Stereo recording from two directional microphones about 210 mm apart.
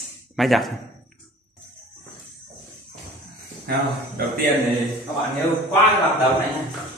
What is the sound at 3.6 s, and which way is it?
Speech, 45° right (ahead or behind).